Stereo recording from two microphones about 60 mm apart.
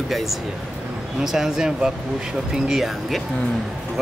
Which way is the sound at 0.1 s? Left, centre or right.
Centre.